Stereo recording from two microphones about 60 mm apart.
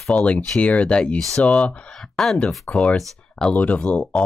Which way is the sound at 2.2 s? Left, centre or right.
Centre.